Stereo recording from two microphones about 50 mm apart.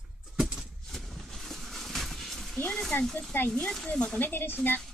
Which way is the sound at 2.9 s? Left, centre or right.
Left.